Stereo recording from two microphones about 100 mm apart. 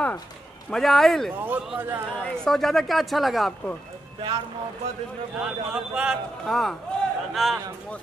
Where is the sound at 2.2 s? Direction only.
5° left (ahead or behind).